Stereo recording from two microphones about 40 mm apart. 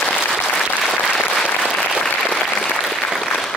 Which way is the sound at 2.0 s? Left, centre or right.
Left.